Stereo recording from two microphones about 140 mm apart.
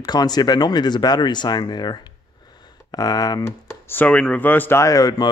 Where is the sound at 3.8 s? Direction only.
10° left (ahead or behind).